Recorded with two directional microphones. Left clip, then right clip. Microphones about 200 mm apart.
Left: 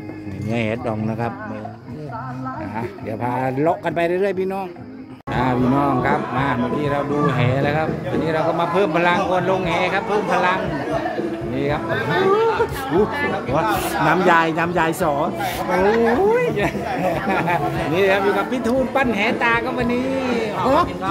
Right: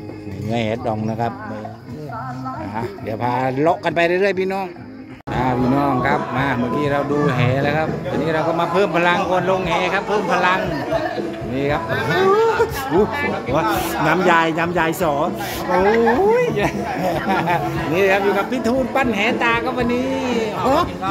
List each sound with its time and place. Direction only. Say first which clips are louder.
0.5 s speech: right 2 dB; 5° left (ahead or behind)
3.2 s speech: right 2 dB; 5° right (ahead or behind)
11.9 s speech: right 1 dB; 25° right (ahead or behind)
13.5 s speech: right 1 dB; 5° right (ahead or behind)